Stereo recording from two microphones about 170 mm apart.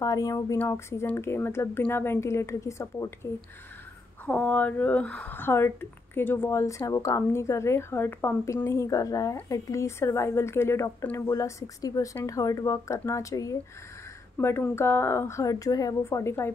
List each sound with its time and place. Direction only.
0.0 s speech: 20° left (ahead or behind)
4.3 s speech: 10° left (ahead or behind)